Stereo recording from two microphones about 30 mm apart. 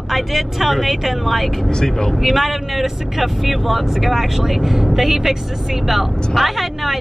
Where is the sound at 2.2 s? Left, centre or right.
Centre.